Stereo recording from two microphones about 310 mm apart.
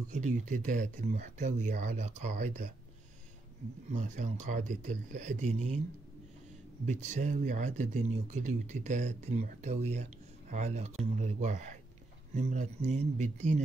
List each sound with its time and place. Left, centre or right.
0.1 s speech: right
3.9 s speech: right
6.9 s speech: right